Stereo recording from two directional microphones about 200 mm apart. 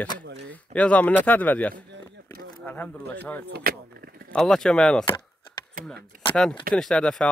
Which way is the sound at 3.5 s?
50° right (ahead or behind).